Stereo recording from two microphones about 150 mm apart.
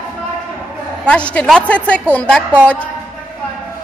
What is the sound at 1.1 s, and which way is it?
A woman's voice, 10° left (ahead or behind).